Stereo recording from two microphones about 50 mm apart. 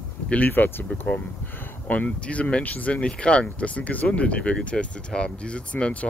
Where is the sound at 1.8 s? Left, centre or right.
Left.